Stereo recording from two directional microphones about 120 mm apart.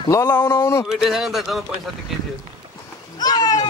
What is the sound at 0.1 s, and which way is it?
Speech, 20° left (ahead or behind).